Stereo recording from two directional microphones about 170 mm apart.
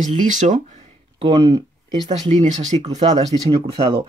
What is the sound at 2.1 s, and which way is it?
Speech, 40° right (ahead or behind).